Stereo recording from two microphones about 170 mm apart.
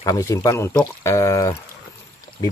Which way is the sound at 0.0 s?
20° left (ahead or behind).